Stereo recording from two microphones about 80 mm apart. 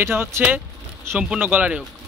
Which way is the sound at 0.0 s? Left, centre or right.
Right.